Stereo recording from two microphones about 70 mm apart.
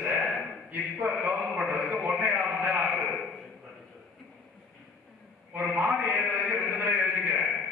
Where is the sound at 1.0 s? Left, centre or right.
Right.